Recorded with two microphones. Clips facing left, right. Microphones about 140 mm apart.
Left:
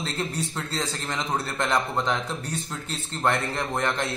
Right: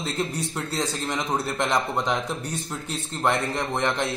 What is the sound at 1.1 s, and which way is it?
A man's voice, 15° right (ahead or behind).